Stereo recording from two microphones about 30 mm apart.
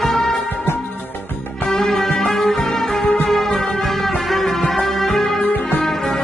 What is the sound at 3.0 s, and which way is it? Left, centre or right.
Music, left.